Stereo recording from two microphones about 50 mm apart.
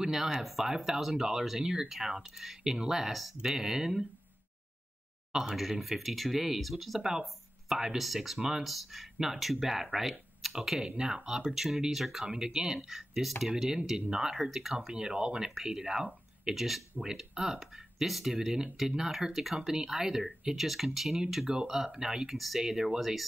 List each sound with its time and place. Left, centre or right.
0.0 s speech: centre
5.3 s speech: centre
10.9 s speech: centre
15.0 s speech: centre